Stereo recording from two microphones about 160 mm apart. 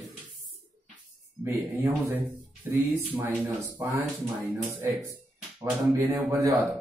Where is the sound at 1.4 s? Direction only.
15° right (ahead or behind).